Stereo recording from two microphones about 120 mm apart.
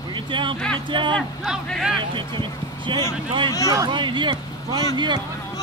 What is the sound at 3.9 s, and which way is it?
Speech, 40° right (ahead or behind).